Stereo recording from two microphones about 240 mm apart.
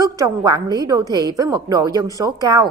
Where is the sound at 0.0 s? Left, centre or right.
Centre.